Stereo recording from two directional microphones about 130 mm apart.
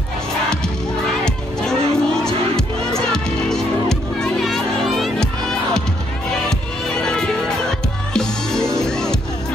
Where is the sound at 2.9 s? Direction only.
5° left (ahead or behind).